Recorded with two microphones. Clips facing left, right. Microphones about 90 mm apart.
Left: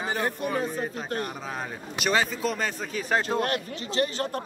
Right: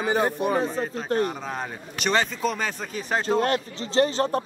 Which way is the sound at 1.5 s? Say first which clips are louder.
Right 2 dB; 5° left (ahead or behind).